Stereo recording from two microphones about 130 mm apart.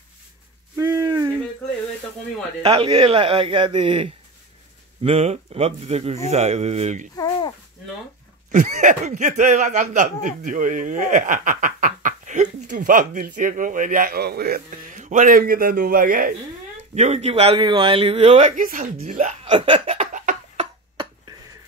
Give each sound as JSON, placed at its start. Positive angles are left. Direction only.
{"t": 0.7, "sound": "a sound", "side_deg": -25}
{"t": 2.6, "sound": "a man's voice", "side_deg": -45}
{"t": 7.2, "sound": "speech", "side_deg": 30}
{"t": 8.5, "sound": "speech", "side_deg": -70}
{"t": 14.7, "sound": "speech", "side_deg": -75}
{"t": 16.9, "sound": "speech", "side_deg": -60}
{"t": 19.4, "sound": "hiccup", "side_deg": -45}
{"t": 20.1, "sound": "a sound", "side_deg": -80}